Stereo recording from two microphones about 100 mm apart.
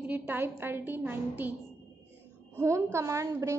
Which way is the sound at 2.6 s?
30° right (ahead or behind).